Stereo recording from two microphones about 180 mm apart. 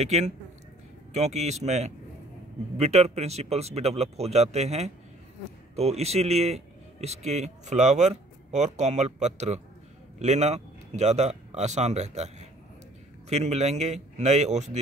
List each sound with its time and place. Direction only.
0.0 s a man's voice: 40° right (ahead or behind)